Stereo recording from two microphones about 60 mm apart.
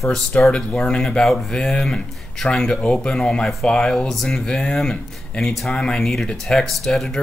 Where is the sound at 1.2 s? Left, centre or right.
Centre.